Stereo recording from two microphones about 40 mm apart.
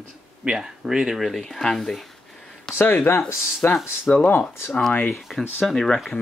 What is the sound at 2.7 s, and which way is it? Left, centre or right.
Speech, left.